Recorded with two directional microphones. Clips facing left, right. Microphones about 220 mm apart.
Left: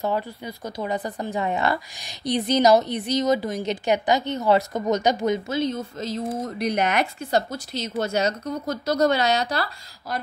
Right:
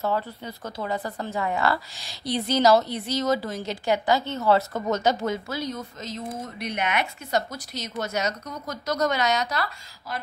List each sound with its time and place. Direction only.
0.0 s speech: 15° left (ahead or behind); by 10.2 s 35° left (ahead or behind)